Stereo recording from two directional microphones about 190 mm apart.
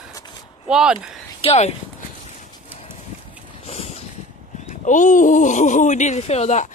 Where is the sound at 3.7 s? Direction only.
35° left (ahead or behind).